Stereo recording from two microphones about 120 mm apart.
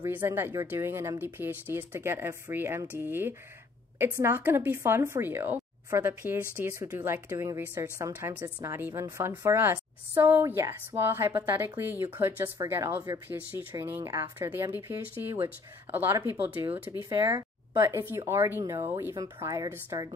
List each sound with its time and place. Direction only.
0.0 s a woman's voice: 20° right (ahead or behind)